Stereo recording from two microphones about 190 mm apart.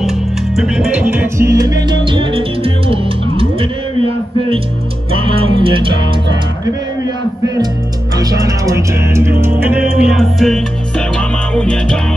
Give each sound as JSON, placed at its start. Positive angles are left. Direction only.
{"t": 0.6, "sound": "music", "side_deg": -5}
{"t": 5.2, "sound": "music", "side_deg": -25}
{"t": 8.2, "sound": "music", "side_deg": -20}